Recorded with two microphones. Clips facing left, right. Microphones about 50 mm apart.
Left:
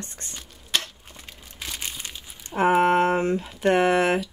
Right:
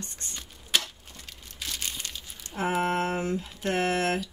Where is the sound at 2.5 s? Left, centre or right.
Left.